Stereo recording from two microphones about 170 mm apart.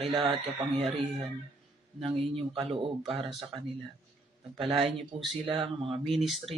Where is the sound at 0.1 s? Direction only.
30° right (ahead or behind).